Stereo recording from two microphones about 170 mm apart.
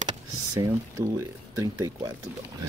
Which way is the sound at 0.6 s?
20° right (ahead or behind).